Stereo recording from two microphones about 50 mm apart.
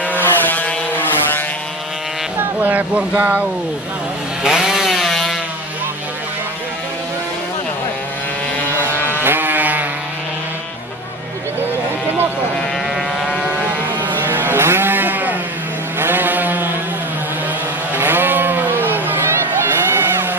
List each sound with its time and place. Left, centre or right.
0.1 s vehicle: left
2.3 s vehicle: right
3.0 s speech: right
4.4 s chainsaw: centre
8.7 s vehicle: right
14.0 s sheep: right
16.0 s vehicle: right
17.9 s sheep: right